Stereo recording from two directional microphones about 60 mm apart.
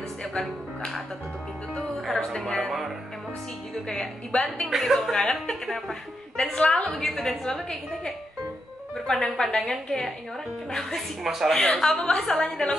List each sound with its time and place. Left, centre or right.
0.2 s music: centre
3.9 s a woman's voice: centre
4.6 s a woman's voice: centre
5.1 s a woman's voice: centre